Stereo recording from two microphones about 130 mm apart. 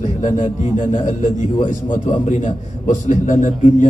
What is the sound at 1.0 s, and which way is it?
A man's voice, 75° left (ahead or behind).